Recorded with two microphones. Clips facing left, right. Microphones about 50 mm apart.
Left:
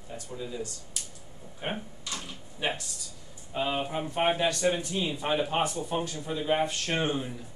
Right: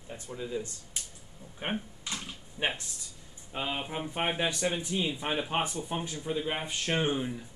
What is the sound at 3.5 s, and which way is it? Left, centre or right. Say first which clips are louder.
Speech: left 4 dB; right.